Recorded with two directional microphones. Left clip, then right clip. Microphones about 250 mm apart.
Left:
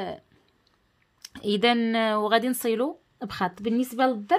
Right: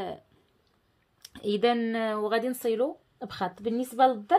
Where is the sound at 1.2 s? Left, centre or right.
Left.